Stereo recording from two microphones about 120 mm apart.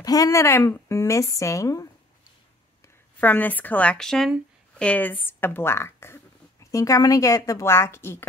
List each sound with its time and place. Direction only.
0.0 s speech: 30° left (ahead or behind)
3.2 s speech: 15° left (ahead or behind)